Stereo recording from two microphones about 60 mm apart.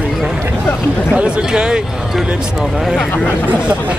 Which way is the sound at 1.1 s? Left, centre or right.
Centre.